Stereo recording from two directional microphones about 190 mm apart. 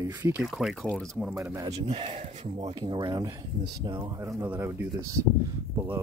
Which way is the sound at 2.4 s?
25° right (ahead or behind).